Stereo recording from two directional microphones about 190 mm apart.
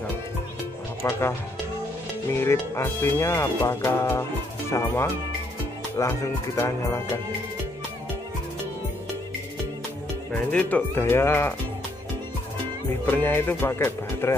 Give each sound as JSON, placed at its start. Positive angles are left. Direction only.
{"t": 1.0, "sound": "speech", "side_deg": 15}
{"t": 2.2, "sound": "speech", "side_deg": 15}
{"t": 10.3, "sound": "speech", "side_deg": 10}
{"t": 13.0, "sound": "speech", "side_deg": 10}